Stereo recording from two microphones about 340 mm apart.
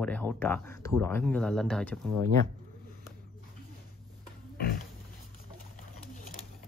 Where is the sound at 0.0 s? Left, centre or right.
Centre.